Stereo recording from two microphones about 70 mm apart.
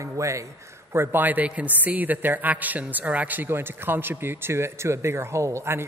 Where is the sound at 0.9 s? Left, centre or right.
Right.